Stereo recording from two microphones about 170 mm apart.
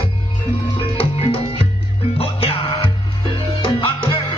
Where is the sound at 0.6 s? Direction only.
30° left (ahead or behind).